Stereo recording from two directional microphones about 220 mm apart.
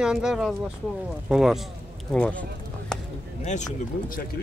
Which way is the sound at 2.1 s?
5° left (ahead or behind).